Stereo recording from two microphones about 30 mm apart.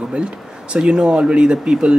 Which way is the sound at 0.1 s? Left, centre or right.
Right.